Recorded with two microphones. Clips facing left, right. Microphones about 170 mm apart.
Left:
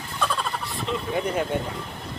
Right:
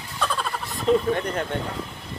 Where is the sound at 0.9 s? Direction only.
40° right (ahead or behind).